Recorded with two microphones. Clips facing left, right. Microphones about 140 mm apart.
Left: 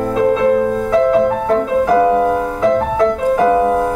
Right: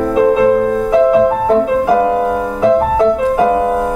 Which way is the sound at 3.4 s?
25° right (ahead or behind).